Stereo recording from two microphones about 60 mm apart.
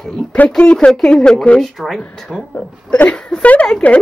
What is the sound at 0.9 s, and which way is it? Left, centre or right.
A woman's voice, centre.